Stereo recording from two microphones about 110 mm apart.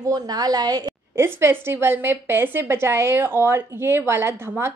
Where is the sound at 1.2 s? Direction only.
20° right (ahead or behind).